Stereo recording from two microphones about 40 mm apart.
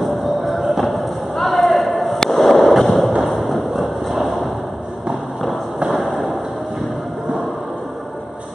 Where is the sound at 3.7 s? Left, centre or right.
Centre.